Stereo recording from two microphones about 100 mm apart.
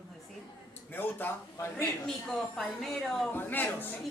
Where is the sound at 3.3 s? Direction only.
20° left (ahead or behind).